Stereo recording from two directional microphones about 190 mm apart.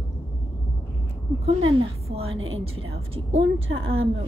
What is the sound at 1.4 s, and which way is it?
Speech, 30° right (ahead or behind).